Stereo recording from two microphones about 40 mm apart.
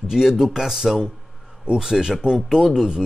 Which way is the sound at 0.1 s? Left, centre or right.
Centre.